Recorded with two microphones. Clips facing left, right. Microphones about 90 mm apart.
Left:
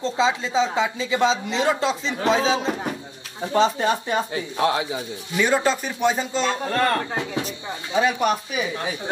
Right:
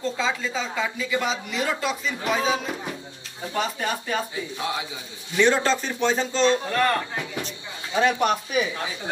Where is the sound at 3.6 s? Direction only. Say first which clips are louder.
Left 7 dB; 25° left (ahead or behind).